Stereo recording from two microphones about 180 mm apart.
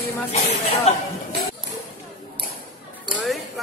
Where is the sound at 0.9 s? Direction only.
35° left (ahead or behind).